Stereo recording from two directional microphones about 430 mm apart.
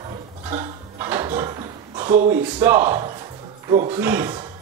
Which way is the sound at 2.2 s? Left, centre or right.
Centre.